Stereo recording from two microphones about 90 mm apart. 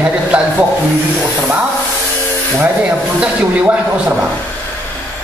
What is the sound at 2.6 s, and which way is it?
Speech, 15° right (ahead or behind).